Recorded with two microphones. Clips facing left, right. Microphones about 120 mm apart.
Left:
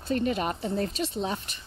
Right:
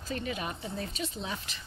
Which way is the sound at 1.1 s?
30° left (ahead or behind).